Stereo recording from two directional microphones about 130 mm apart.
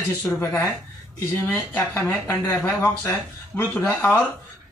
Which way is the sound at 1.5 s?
20° left (ahead or behind).